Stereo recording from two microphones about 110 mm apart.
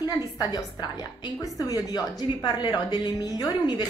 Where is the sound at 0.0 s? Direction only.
40° left (ahead or behind).